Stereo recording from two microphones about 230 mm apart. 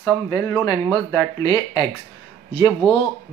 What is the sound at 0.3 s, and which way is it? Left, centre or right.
Speech, centre.